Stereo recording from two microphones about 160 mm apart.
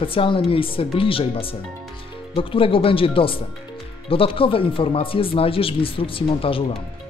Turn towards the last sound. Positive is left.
turn(degrees=35)  # may be behind; listen again after turning